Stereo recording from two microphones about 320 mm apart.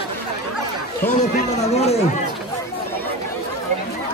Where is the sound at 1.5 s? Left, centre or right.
Left.